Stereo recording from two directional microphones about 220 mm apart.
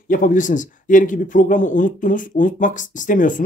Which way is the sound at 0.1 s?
35° left (ahead or behind).